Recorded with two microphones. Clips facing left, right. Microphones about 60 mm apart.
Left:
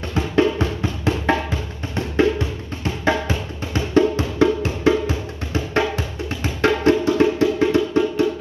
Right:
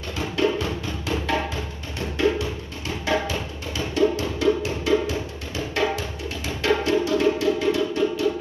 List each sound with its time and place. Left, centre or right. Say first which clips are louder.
0.1 s music: left 4 dB; left